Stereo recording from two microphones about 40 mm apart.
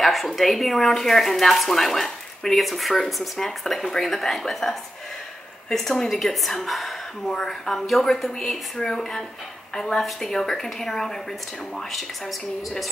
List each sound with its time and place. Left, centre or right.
0.0 s a woman's voice: centre
8.7 s a woman's voice: centre